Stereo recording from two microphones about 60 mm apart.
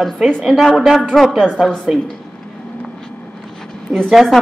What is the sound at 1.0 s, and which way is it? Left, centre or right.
Speech, centre.